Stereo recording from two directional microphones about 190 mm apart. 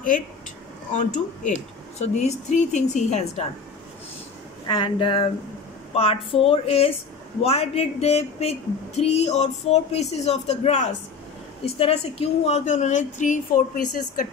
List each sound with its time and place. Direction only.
0.9 s speech: 40° left (ahead or behind)
4.6 s speech: 25° left (ahead or behind); by 13.6 s 45° left (ahead or behind)